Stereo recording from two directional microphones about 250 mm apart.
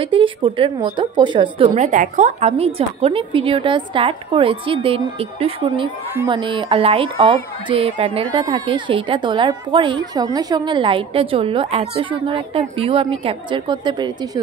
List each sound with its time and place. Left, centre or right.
0.0 s speech: right